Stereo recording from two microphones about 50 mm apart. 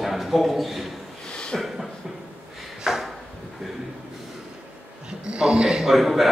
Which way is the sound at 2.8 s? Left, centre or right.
Centre.